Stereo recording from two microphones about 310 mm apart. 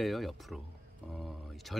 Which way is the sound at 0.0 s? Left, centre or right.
Centre.